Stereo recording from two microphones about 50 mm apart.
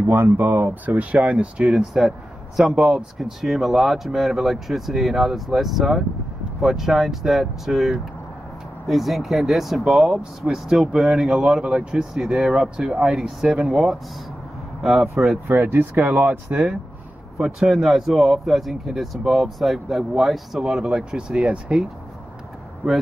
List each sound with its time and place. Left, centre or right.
0.1 s speech: right
0.8 s speech: right
1.8 s speech: centre
11.6 s speech: centre
11.9 s speech: centre
12.5 s speech: right
14.8 s speech: centre
15.4 s speech: right
16.5 s speech: right
17.4 s speech: centre
21.4 s speech: right